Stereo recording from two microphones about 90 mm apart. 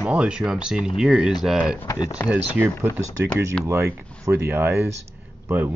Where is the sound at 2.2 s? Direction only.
20° right (ahead or behind).